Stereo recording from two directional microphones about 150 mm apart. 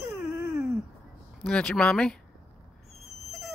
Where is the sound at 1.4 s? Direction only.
5° left (ahead or behind).